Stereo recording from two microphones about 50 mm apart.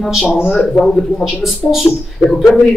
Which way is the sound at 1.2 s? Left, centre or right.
Centre.